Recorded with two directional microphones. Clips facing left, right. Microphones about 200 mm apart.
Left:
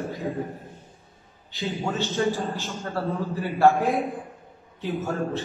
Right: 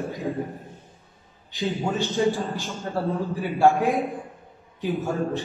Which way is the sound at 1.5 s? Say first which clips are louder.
Right 2 dB; 15° right (ahead or behind).